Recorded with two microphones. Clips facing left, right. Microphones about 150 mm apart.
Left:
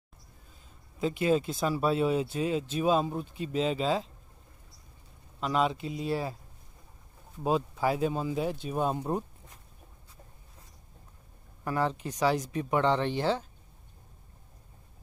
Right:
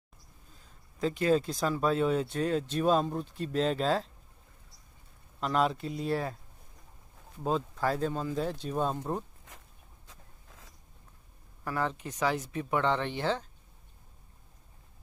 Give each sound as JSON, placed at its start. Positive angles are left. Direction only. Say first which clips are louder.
{"t": 0.9, "sound": "speech", "louder": "even", "side_deg": 5}
{"t": 5.4, "sound": "speech", "louder": "even", "side_deg": 0}
{"t": 7.4, "sound": "speech", "louder": "left 2 dB", "side_deg": 10}
{"t": 10.0, "sound": "a sound", "louder": "even", "side_deg": -90}
{"t": 11.6, "sound": "speech", "louder": "left 3 dB", "side_deg": 20}
{"t": 12.0, "sound": "speech", "louder": "left 3 dB", "side_deg": 30}
{"t": 12.5, "sound": "speech", "louder": "left 2 dB", "side_deg": 20}
{"t": 13.2, "sound": "speech", "louder": "left 2 dB", "side_deg": 10}